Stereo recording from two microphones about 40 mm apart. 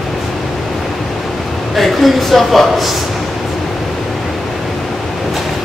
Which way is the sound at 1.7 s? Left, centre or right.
Centre.